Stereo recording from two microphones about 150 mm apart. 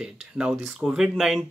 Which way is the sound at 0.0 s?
5° right (ahead or behind).